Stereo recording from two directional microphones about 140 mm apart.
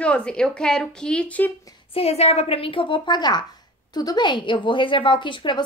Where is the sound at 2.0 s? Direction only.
45° left (ahead or behind).